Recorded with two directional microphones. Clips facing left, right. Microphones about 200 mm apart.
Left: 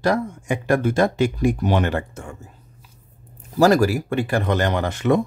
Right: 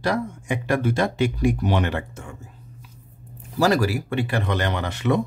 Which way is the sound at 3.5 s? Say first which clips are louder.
Left 4 dB; 45° left (ahead or behind).